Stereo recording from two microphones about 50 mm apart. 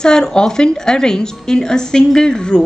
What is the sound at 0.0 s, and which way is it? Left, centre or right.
A woman's voice, centre.